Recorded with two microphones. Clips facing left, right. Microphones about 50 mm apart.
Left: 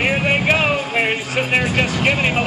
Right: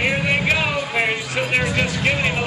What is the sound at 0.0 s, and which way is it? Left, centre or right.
Music, left.